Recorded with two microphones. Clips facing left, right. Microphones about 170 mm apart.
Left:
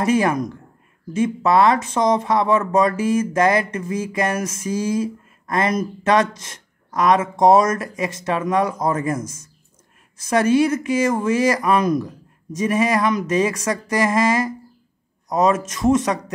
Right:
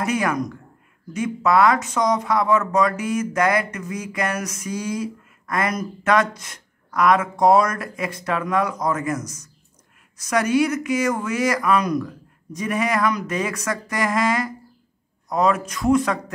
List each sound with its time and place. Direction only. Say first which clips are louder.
0.0 s speech: left 4 dB; 25° left (ahead or behind)